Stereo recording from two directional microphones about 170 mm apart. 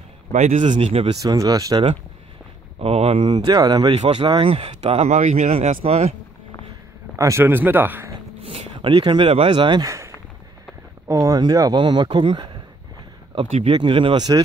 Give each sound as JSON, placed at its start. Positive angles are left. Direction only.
{"t": 0.3, "sound": "a man's voice", "side_deg": -40}
{"t": 1.1, "sound": "speech", "side_deg": -20}
{"t": 2.8, "sound": "speech", "side_deg": -35}
{"t": 7.2, "sound": "speech", "side_deg": -15}
{"t": 8.4, "sound": "speech", "side_deg": -35}
{"t": 13.7, "sound": "speech", "side_deg": -30}